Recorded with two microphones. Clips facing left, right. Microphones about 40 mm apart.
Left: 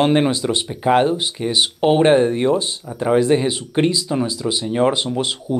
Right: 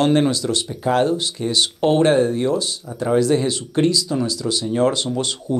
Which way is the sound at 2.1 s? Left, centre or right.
Left.